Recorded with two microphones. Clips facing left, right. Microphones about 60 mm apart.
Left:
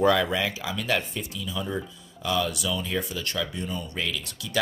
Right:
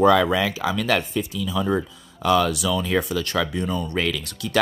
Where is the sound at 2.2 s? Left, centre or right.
Right.